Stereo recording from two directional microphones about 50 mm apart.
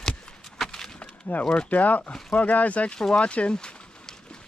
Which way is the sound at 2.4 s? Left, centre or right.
Left.